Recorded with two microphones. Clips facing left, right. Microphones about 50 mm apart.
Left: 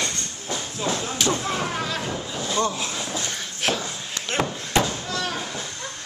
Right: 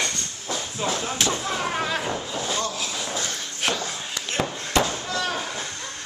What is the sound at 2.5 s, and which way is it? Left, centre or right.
Vehicle, left.